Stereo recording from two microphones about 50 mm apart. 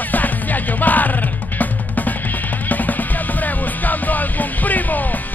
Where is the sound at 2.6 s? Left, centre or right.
Left.